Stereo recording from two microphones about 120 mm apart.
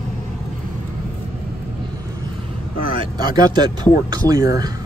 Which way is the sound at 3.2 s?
35° right (ahead or behind).